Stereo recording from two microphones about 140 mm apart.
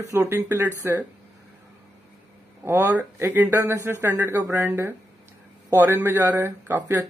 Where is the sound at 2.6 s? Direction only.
15° right (ahead or behind).